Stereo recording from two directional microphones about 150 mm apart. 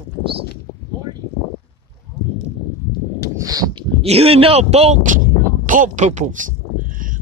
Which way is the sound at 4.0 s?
40° right (ahead or behind).